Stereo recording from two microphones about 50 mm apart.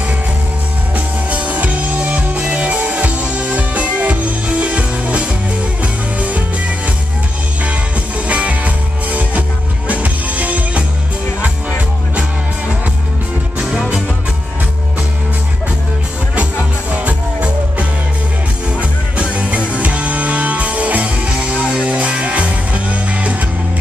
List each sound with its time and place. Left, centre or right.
0.9 s music: right
8.3 s music: right
16.9 s music: right